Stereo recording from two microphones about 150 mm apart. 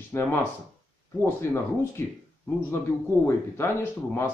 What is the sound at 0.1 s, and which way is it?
Speech, 15° left (ahead or behind).